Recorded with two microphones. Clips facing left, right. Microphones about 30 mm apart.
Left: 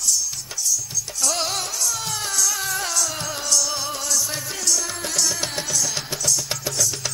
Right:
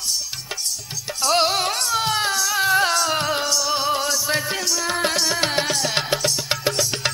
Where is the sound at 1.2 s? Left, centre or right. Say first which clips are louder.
Right 7 dB; right.